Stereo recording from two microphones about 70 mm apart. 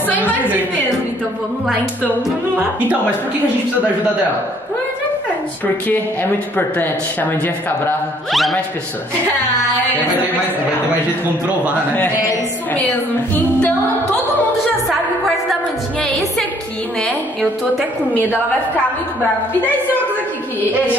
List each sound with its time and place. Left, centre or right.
0.1 s a woman's voice: right
6.5 s speech: left
8.3 s a woman's voice: centre
13.3 s music: left
16.0 s a woman's voice: centre